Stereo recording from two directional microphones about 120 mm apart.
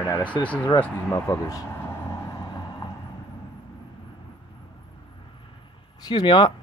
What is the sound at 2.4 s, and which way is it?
Vehicle, 35° left (ahead or behind).